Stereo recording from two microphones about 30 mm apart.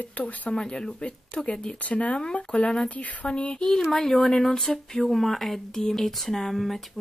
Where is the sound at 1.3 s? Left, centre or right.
Left.